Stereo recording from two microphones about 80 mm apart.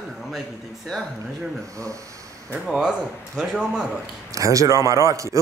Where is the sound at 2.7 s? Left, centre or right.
Centre.